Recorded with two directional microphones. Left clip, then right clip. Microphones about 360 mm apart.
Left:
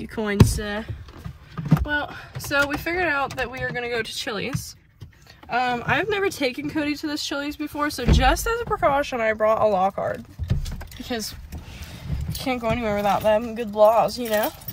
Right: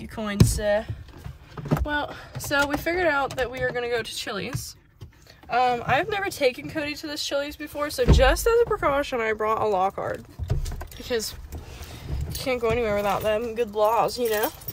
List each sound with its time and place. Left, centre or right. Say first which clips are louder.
0.0 s speech: left 4 dB; centre
1.9 s speech: left 2 dB; centre
12.4 s speech: right 1 dB; centre